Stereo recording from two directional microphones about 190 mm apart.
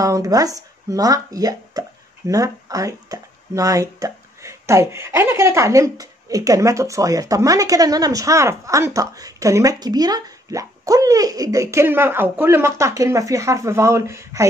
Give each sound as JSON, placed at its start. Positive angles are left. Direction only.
{"t": 0.0, "sound": "speech", "side_deg": -15}